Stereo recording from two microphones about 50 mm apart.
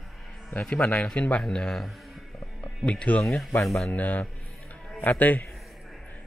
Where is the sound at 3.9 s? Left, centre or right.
Left.